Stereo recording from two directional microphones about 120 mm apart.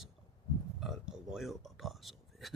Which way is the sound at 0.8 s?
5° right (ahead or behind).